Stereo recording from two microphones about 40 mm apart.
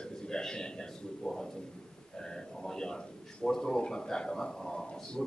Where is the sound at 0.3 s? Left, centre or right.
Centre.